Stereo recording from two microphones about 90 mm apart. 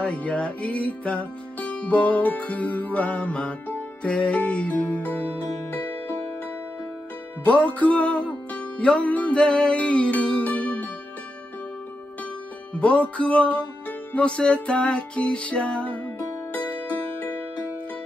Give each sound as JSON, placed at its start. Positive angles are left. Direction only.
{"t": 0.0, "sound": "music", "side_deg": 15}
{"t": 7.4, "sound": "music", "side_deg": 15}
{"t": 12.7, "sound": "music", "side_deg": 15}